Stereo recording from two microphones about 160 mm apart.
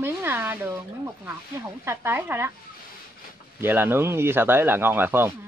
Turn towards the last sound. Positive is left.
turn(degrees=-15)  # may be behind; listen again after turning